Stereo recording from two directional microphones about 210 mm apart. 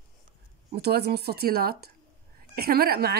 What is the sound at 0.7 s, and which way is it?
A woman's voice, 50° right (ahead or behind).